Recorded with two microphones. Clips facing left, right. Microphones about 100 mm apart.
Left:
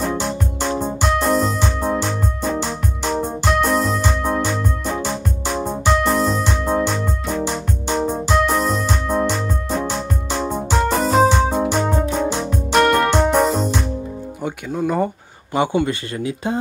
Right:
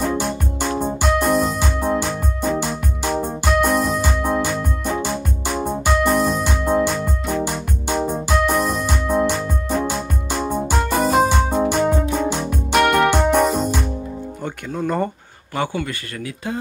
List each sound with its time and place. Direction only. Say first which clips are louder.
0.0 s music: even; 5° right (ahead or behind)
0.7 s keyboard: right 1 dB; 10° right (ahead or behind)
9.8 s music: left 1 dB; 5° right (ahead or behind)
14.4 s music: left 3 dB; 5° left (ahead or behind)
15.5 s speech: left 5 dB; 20° left (ahead or behind)